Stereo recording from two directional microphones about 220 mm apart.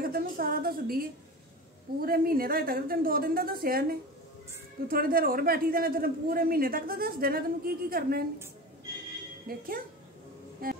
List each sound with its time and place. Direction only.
0.0 s a woman's voice: 40° right (ahead or behind)
4.8 s a man's voice: 40° right (ahead or behind)
9.5 s a man's voice: 40° right (ahead or behind)
10.6 s music: 40° right (ahead or behind)